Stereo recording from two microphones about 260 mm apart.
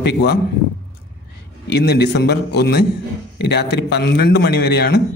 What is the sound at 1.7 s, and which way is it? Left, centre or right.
A man's voice, left.